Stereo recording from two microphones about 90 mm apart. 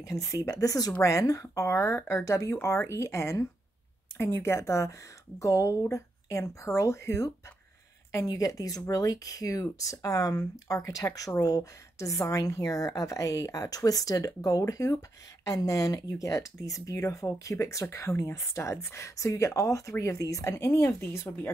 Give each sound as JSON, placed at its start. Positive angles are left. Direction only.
{"t": 0.0, "sound": "speech", "side_deg": 40}